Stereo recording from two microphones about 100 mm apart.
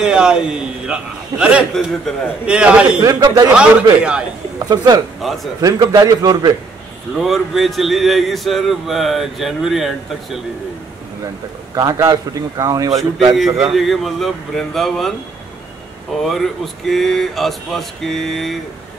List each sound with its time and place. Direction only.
0.0 s a man's voice: 10° right (ahead or behind)
3.2 s a man's voice: 40° right (ahead or behind)
3.5 s a man's voice: 10° right (ahead or behind)
4.6 s a man's voice: 40° right (ahead or behind)
5.2 s speech: centre (ahead or behind)
5.6 s a man's voice: 40° right (ahead or behind)
7.2 s speech: centre (ahead or behind)
11.7 s a man's voice: 40° right (ahead or behind)
13.6 s speech: centre (ahead or behind)
16.2 s speech: centre (ahead or behind)